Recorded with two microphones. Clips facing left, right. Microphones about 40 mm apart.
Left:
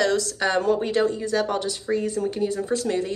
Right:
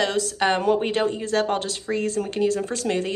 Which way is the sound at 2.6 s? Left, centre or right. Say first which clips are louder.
Left 1 dB; right.